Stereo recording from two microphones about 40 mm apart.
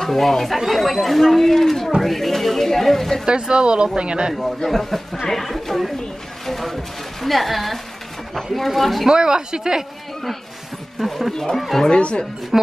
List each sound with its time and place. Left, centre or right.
0.0 s speech: centre
2.0 s music: centre
3.3 s speech: right
4.3 s speech: centre
6.4 s a sound: centre
8.4 s speech: centre
9.1 s speech: centre
11.0 s speech: centre
11.3 s speech: centre